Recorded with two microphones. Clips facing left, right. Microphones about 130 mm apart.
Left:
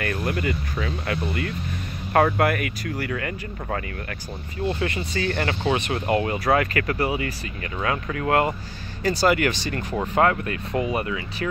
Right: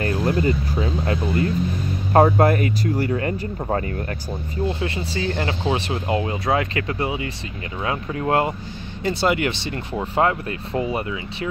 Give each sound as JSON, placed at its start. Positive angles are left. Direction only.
{"t": 0.0, "sound": "speech", "side_deg": -30}